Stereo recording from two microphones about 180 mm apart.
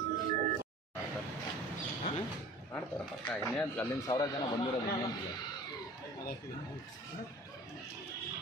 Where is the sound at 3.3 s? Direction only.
5° left (ahead or behind).